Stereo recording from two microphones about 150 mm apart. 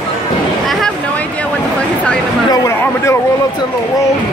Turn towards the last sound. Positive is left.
turn(degrees=20)  # may be behind; listen again after turning